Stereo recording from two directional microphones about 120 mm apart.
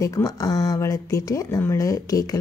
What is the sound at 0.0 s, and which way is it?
A woman's voice, 30° left (ahead or behind).